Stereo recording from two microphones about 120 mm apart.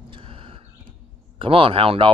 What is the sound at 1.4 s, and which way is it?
Speech, 50° right (ahead or behind).